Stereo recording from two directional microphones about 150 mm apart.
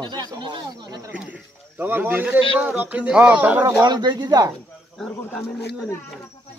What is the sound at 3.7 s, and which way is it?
Speech, 25° right (ahead or behind).